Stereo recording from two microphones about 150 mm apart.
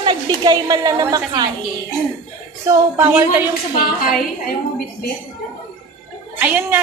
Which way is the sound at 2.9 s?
15° right (ahead or behind).